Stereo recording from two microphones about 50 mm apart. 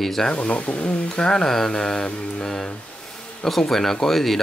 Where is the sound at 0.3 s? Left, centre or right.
Left.